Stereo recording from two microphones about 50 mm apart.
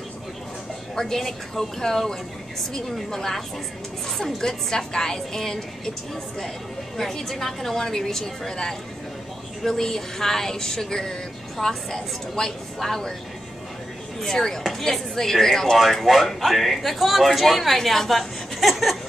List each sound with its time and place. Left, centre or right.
0.9 s speech: centre
7.0 s speech: centre
14.2 s speech: centre